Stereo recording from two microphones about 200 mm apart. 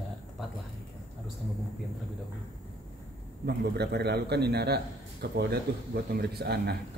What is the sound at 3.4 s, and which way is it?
A man's voice, 55° right (ahead or behind).